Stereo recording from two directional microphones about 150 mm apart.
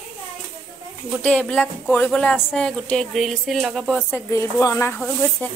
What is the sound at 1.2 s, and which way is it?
Speech, 5° left (ahead or behind).